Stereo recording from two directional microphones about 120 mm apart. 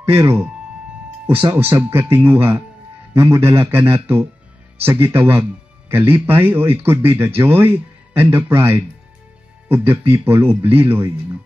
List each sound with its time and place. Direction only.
0.1 s speech: 20° right (ahead or behind)
10.1 s speech: 20° right (ahead or behind)